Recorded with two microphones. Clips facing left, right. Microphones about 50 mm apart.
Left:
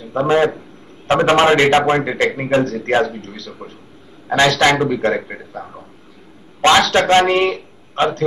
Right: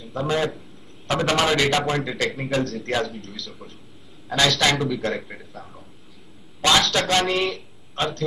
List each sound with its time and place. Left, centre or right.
0.0 s a man's voice: left